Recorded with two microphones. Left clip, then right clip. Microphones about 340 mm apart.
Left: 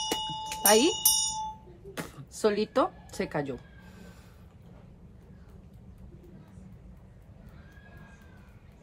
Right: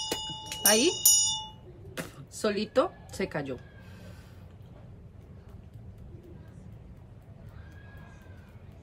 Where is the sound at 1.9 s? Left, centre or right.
Centre.